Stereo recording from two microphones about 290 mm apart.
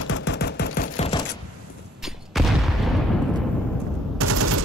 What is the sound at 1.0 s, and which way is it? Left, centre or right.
Chopping, centre.